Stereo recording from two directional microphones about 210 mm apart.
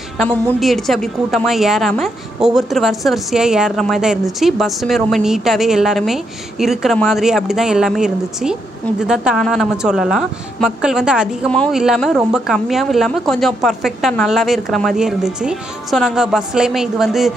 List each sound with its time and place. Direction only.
0.2 s a woman's voice: centre (ahead or behind)